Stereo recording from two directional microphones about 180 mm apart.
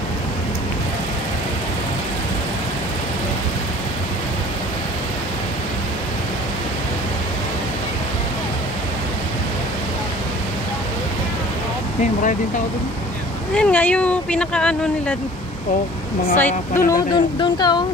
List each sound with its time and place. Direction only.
13.6 s speech: 10° left (ahead or behind)
16.3 s speech: 10° left (ahead or behind)
16.9 s speech: 25° left (ahead or behind)